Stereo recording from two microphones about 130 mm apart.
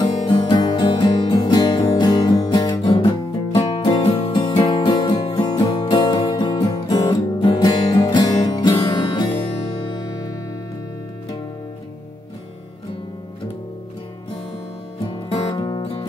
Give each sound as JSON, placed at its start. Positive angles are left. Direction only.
{"t": 0.0, "sound": "music", "side_deg": 35}
{"t": 15.0, "sound": "music", "side_deg": 45}